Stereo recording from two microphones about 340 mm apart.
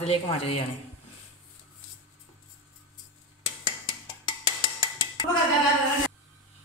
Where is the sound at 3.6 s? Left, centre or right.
Centre.